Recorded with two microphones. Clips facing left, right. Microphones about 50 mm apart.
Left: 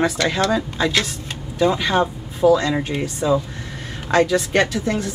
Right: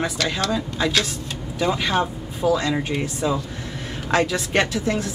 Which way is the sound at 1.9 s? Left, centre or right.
Centre.